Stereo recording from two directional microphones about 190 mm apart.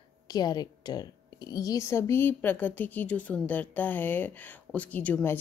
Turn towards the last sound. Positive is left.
turn(degrees=10)  # may be behind; listen again after turning